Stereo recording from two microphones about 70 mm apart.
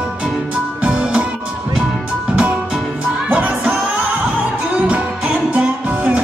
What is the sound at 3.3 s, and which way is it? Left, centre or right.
Music, centre.